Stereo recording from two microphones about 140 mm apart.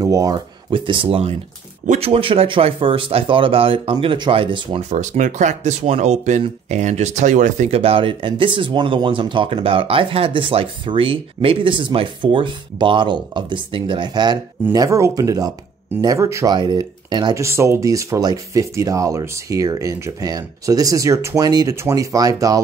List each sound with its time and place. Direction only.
0.0 s speech: 25° right (ahead or behind)
0.7 s speech: 35° right (ahead or behind)
4.8 s speech: 60° right (ahead or behind); by 16.5 s 20° right (ahead or behind)
16.5 s speech: 30° right (ahead or behind)
17.4 s speech: 20° right (ahead or behind)